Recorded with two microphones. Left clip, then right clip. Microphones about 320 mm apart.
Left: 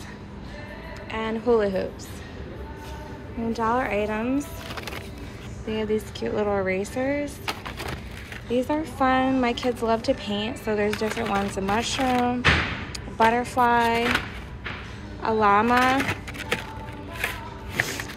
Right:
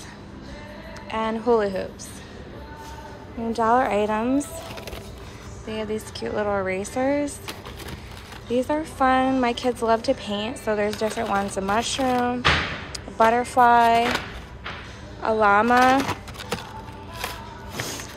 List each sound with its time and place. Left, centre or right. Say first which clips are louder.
1.1 s a woman's voice: right 1 dB; centre
3.5 s a woman's voice: right 5 dB; centre
5.7 s speech: left 3 dB; centre
8.5 s speech: right 1 dB; centre
15.2 s speech: right 2 dB; centre
16.0 s a sound: even; centre
17.7 s music: left 5 dB; centre